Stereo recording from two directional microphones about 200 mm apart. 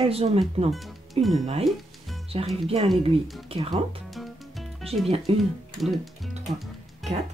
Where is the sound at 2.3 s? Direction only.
30° right (ahead or behind).